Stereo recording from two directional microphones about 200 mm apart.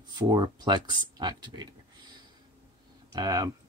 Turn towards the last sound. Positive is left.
turn(degrees=-15)  # may be behind; listen again after turning